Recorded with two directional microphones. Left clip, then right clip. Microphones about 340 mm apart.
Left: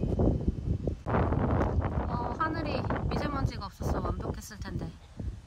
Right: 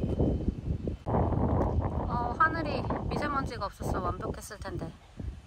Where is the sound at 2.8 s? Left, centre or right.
Right.